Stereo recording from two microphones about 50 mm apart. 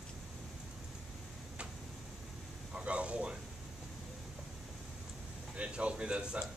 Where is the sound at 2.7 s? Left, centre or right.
Right.